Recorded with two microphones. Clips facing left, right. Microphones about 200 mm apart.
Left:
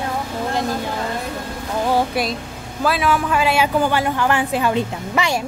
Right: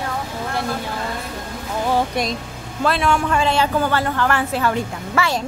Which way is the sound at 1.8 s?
5° left (ahead or behind).